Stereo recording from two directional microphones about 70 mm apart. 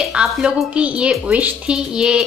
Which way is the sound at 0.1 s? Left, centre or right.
Centre.